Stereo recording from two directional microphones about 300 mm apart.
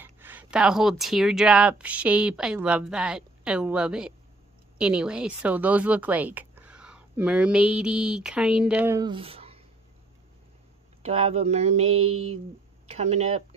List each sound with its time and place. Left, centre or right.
0.0 s speech: centre
11.0 s speech: centre
12.1 s speech: right
12.8 s speech: right